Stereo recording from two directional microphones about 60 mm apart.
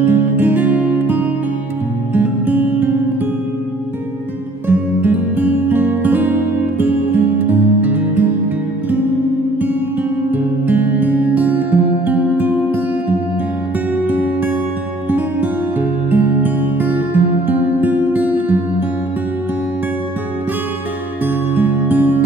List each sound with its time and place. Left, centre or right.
0.0 s music: right
4.6 s music: right
10.3 s music: right
14.0 s music: right
21.5 s music: right